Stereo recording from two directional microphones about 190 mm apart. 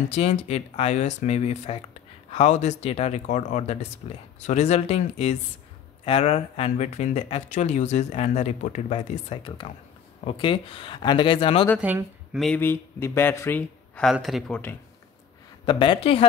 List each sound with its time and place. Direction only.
0.1 s speech: 35° left (ahead or behind)
11.8 s speech: 10° right (ahead or behind)
12.4 s speech: 10° left (ahead or behind)
15.6 s speech: 25° left (ahead or behind)